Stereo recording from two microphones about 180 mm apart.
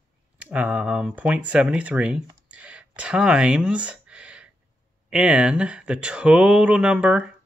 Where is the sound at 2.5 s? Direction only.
5° right (ahead or behind).